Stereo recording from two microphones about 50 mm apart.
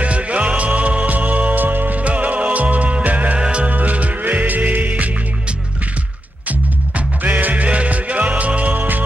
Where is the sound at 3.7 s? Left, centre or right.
Right.